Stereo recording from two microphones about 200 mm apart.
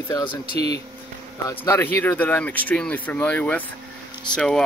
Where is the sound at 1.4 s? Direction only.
15° left (ahead or behind).